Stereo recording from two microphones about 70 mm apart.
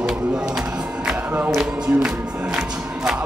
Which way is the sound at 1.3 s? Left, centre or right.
Right.